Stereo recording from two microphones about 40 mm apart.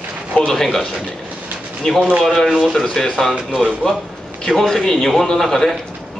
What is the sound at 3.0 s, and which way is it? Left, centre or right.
A man's voice, centre.